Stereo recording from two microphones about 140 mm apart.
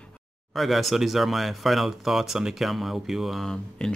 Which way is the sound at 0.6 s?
Centre (ahead or behind).